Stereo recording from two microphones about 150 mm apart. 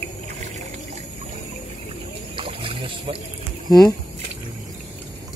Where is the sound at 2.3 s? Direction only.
35° right (ahead or behind).